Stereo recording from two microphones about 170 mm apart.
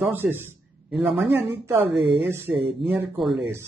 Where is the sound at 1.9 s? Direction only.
85° right.